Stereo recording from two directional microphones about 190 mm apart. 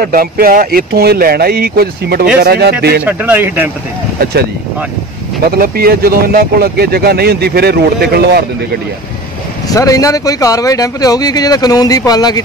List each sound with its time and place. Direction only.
0.0 s speech: 50° right (ahead or behind)
3.1 s speech: 10° right (ahead or behind)
4.2 s speech: 55° right (ahead or behind)
5.5 s speech: 50° right (ahead or behind)
9.7 s speech: 20° left (ahead or behind)